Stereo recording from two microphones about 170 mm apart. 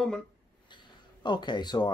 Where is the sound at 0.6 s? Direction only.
25° left (ahead or behind).